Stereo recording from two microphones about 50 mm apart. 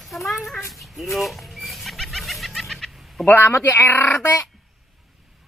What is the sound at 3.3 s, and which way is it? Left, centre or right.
Speech, left.